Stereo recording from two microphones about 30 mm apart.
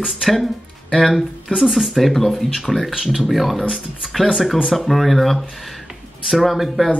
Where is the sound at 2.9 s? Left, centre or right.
Centre.